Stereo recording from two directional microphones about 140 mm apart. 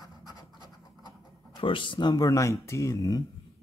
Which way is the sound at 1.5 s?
35° left (ahead or behind).